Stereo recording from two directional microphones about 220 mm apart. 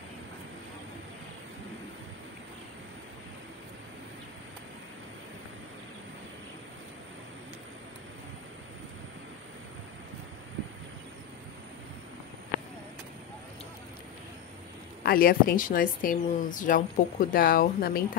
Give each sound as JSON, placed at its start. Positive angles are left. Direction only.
{"t": 15.0, "sound": "speech", "side_deg": 40}